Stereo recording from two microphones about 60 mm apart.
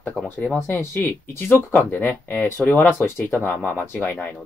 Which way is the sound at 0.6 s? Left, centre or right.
Left.